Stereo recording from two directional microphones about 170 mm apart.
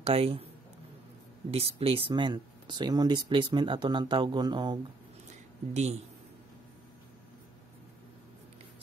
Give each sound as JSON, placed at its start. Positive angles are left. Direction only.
{"t": 0.0, "sound": "speech", "side_deg": -35}
{"t": 1.5, "sound": "speech", "side_deg": -35}
{"t": 5.7, "sound": "speech", "side_deg": -40}